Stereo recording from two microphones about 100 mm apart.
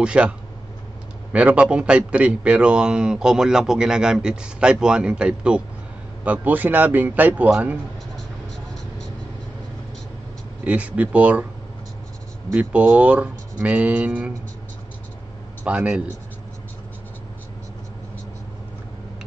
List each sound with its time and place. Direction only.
0.0 s a man's voice: 10° right (ahead or behind)
1.3 s a man's voice: 15° right (ahead or behind)
10.6 s a man's voice: 15° right (ahead or behind)
12.5 s a man's voice: 15° right (ahead or behind)
15.6 s a man's voice: 15° right (ahead or behind)